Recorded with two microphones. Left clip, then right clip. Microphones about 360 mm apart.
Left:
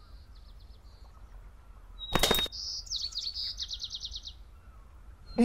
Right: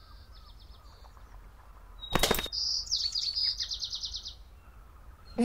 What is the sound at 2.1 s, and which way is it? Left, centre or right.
Chirp, centre.